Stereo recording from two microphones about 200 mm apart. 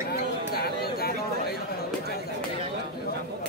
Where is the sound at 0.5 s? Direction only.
50° left (ahead or behind).